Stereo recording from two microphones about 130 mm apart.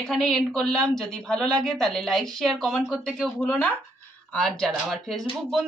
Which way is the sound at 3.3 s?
15° left (ahead or behind).